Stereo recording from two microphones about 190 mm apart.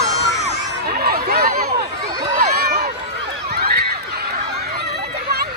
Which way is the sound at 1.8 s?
20° right (ahead or behind).